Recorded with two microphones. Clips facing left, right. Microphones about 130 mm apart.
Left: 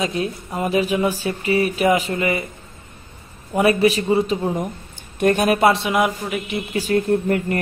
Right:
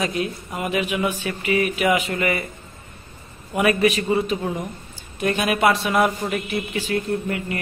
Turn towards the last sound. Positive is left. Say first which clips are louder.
# left 6 dB
turn(degrees=45)  # may be behind; listen again after turning